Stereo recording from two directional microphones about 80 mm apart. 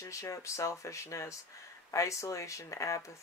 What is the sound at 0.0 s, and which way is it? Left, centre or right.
Speech, left.